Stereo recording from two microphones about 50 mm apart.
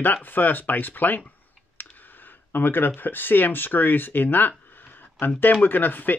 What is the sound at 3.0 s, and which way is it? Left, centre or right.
Speech, left.